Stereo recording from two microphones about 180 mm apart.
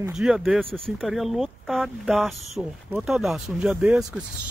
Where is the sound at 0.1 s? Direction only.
5° right (ahead or behind).